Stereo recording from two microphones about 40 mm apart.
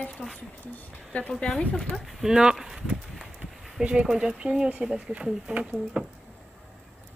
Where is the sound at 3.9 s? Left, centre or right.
Right.